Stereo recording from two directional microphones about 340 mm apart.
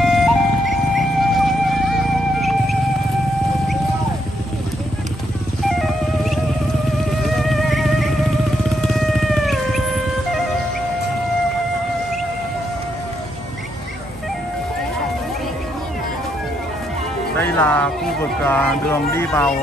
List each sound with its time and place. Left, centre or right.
0.0 s music: centre
5.7 s music: centre
17.4 s music: centre
18.4 s speech: centre